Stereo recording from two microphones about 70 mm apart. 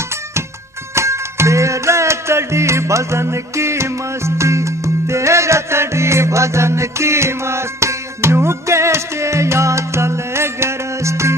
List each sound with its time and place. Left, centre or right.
0.9 s music: right